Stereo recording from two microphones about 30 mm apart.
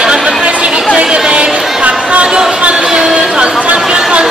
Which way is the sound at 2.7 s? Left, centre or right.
Right.